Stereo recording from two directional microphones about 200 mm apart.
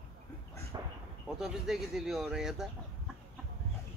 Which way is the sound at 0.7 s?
20° right (ahead or behind).